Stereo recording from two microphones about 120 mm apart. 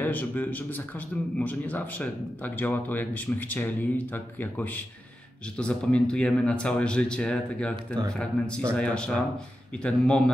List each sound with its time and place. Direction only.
0.0 s a man's voice: 15° left (ahead or behind)
7.7 s speech: 35° right (ahead or behind)
8.1 s a man's voice: 10° left (ahead or behind)